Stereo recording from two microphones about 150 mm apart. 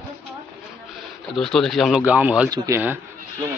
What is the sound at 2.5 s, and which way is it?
Speech, 20° right (ahead or behind).